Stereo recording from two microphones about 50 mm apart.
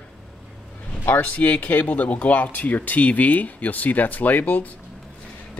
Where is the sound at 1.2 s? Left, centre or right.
Left.